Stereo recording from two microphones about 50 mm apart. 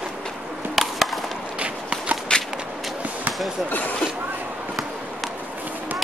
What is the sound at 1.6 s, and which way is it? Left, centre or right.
Walk, right.